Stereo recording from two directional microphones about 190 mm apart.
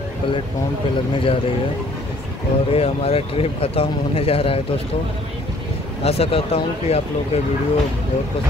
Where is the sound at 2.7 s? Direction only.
30° left (ahead or behind).